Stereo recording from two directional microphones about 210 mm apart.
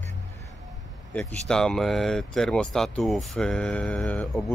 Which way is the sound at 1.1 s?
5° left (ahead or behind).